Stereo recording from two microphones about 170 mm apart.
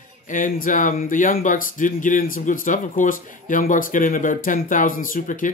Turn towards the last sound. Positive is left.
turn(degrees=50)  # may be behind; listen again after turning